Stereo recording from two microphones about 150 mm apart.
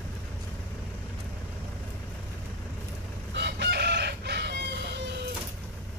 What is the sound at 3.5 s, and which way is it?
Chicken, 90° right.